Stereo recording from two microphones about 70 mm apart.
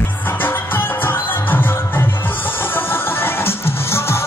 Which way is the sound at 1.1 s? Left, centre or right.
Left.